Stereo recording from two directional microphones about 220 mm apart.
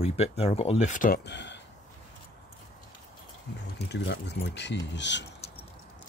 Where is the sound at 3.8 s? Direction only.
50° left (ahead or behind).